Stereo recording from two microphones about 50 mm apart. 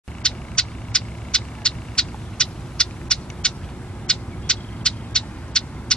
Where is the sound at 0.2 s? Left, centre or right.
Centre.